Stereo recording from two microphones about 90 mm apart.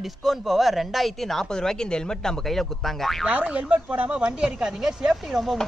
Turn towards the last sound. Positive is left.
turn(degrees=-5)  # may be behind; listen again after turning